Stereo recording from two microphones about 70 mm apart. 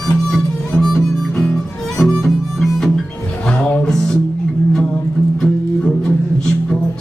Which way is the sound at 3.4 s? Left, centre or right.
Centre.